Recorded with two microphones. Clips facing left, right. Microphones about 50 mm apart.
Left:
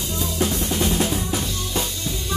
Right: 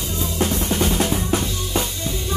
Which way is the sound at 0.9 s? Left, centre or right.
Right.